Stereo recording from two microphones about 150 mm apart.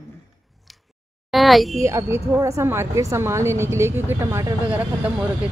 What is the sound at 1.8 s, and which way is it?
A woman's voice, 20° right (ahead or behind).